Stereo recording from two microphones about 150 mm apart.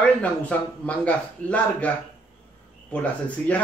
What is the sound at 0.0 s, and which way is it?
Speech, 10° left (ahead or behind).